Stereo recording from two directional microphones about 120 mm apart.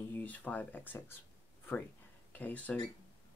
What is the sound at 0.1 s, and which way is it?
Speech, 15° left (ahead or behind).